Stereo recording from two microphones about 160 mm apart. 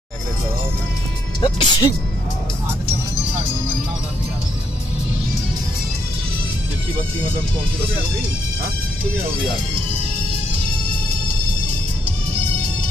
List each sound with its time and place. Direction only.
1.4 s speech: 25° left (ahead or behind)